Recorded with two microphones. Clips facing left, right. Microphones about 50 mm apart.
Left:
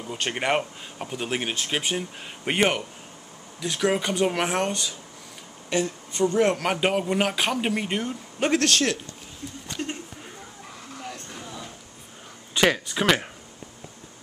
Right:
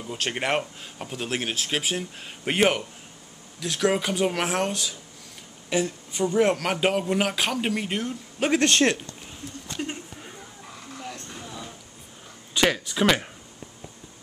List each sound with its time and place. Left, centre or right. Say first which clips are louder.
0.0 s a woman's voice: left 1 dB; centre
6.5 s speech: even; centre
8.5 s speech: right 3 dB; right
11.0 s a sound: even; centre
12.5 s speech: left 1 dB; centre